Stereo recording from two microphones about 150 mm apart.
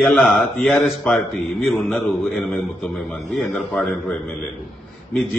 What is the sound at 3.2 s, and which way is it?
Speech, 20° left (ahead or behind).